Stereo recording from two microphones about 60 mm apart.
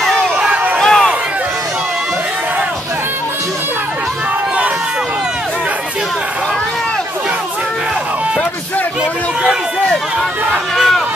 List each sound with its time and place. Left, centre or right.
0.4 s crowd: right
0.7 s crowd: centre